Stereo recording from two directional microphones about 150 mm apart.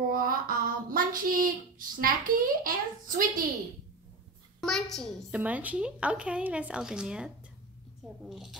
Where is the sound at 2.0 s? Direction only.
70° right (ahead or behind).